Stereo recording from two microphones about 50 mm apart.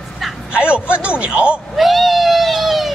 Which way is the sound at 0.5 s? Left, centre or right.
Right.